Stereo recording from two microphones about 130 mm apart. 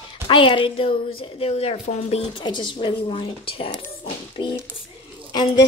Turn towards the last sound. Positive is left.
turn(degrees=35)  # may be behind; listen again after turning